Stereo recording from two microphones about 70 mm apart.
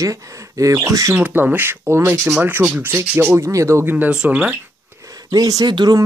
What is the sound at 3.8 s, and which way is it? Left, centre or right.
Speech, right.